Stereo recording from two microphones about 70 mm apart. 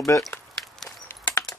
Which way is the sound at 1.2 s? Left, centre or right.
Left.